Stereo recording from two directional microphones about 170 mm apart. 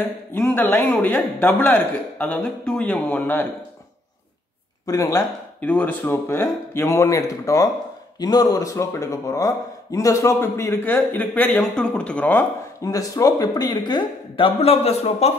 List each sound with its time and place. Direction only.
0.3 s speech: 10° left (ahead or behind)
4.8 s a man's voice: 20° left (ahead or behind)
5.6 s a man's voice: 10° left (ahead or behind); by 15.3 s 40° left (ahead or behind)